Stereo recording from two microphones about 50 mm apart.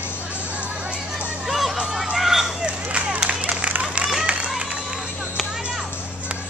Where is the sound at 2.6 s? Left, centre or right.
Right.